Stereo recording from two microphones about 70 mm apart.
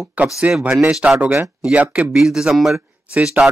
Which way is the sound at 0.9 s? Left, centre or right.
Centre.